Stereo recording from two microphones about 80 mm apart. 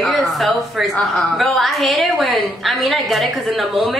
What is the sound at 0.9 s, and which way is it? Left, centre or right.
A woman's voice, centre.